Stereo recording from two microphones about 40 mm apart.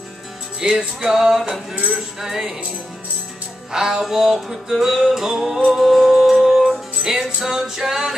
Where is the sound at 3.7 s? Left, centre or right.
Centre.